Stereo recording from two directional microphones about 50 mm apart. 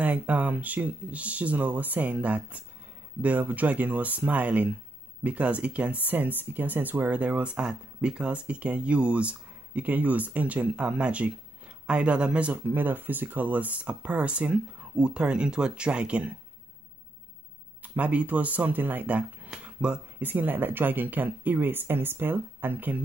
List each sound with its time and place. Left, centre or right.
0.0 s speech: right
12.7 s speech: right
17.8 s speech: right
20.2 s speech: right